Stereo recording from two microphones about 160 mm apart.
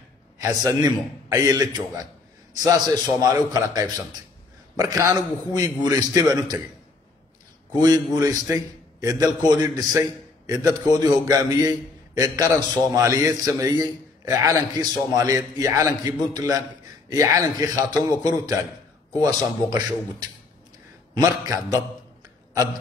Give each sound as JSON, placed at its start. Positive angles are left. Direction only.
{"t": 0.4, "sound": "a man's voice", "side_deg": -20}
{"t": 7.8, "sound": "a man's voice", "side_deg": -25}